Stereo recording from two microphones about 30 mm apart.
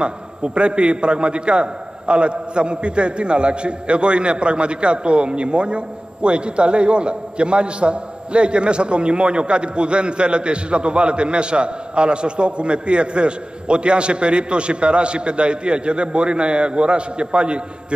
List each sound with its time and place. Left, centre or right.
0.0 s a man's voice: right